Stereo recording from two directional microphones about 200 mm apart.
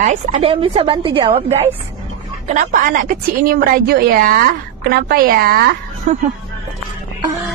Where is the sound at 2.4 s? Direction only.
35° right (ahead or behind).